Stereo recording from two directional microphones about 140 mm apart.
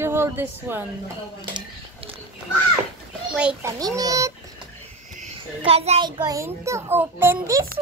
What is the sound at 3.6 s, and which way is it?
Speech, 25° right (ahead or behind).